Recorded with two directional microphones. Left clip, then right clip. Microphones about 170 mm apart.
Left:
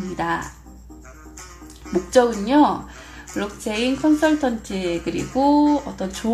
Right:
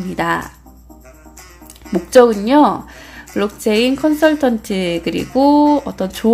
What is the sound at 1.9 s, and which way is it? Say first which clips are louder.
A woman's voice: right 7 dB; 40° right (ahead or behind).